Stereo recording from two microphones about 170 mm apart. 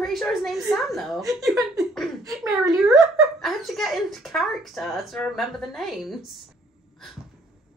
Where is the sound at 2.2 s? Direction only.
20° right (ahead or behind).